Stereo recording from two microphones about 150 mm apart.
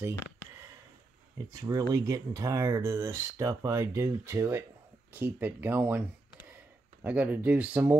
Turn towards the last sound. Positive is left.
turn(degrees=-10)  # may be behind; listen again after turning